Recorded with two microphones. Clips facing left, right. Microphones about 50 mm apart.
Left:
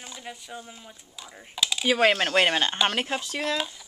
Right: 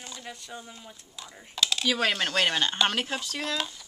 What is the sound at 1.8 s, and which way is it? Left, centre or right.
Speech, left.